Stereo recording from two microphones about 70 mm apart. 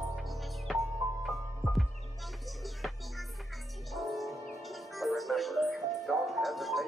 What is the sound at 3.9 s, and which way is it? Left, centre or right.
Music, centre.